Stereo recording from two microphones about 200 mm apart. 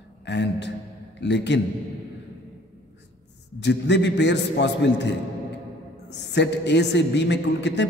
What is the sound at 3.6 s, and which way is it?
A woman's voice, 60° left (ahead or behind).